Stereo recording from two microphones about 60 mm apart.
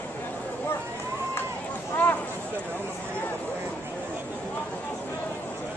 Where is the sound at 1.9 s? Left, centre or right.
Left.